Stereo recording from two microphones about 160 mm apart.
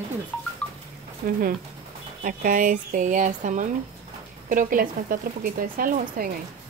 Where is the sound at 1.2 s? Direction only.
65° right (ahead or behind).